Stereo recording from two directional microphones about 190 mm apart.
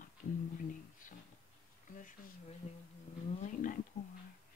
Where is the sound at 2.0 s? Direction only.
45° left (ahead or behind).